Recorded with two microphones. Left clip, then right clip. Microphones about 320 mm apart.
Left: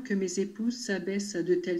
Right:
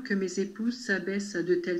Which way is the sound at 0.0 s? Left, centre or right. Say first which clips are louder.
Even; centre.